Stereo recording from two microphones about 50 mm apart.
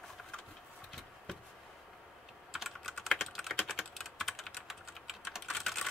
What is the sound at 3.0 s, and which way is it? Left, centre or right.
Typing, centre.